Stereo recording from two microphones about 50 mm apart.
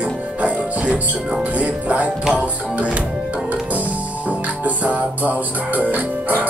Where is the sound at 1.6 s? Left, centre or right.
Right.